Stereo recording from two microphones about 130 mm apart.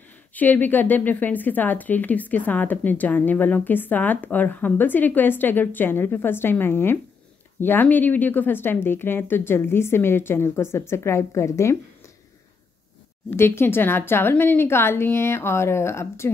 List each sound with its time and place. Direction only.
0.3 s speech: 15° left (ahead or behind)
13.3 s speech: 15° left (ahead or behind)